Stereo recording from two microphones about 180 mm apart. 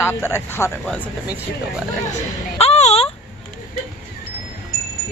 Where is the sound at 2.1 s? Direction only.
35° left (ahead or behind).